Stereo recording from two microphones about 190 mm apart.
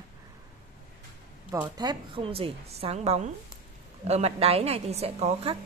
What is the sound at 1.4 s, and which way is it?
A woman's voice, 20° right (ahead or behind).